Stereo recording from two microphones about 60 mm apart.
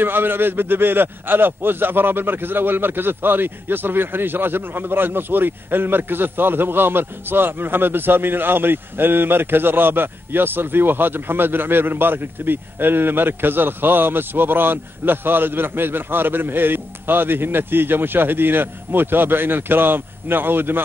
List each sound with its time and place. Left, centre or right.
0.0 s a man's voice: right